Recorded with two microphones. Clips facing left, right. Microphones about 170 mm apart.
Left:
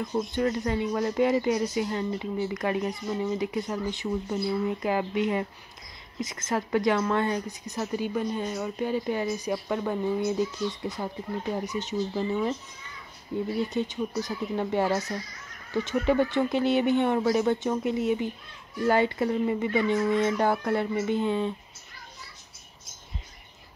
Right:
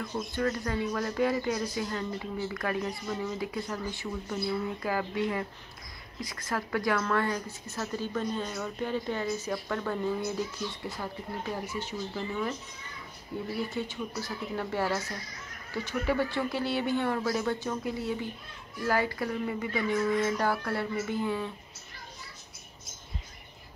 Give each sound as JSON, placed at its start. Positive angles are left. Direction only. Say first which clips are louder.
{"t": 0.3, "sound": "a woman's voice", "louder": "left 1 dB", "side_deg": 20}
{"t": 13.7, "sound": "speech", "louder": "left 5 dB", "side_deg": 20}